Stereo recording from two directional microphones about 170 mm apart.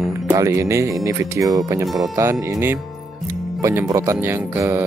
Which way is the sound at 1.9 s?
Centre (ahead or behind).